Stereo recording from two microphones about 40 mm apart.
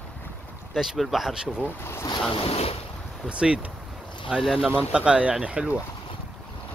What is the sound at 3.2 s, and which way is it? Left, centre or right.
Speech, right.